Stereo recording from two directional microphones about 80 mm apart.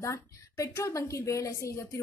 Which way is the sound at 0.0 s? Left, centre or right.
Left.